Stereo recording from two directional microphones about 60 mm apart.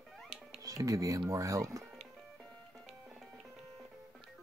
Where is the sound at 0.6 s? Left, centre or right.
Right.